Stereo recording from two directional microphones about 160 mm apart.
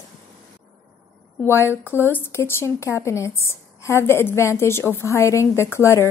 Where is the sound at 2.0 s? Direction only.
15° left (ahead or behind).